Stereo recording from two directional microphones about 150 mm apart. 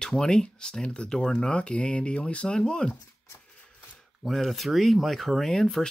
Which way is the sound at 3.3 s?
10° left (ahead or behind).